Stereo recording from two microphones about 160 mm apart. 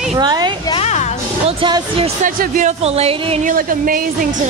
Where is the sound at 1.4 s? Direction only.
30° right (ahead or behind).